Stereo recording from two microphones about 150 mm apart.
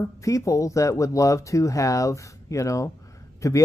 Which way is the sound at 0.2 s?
20° left (ahead or behind).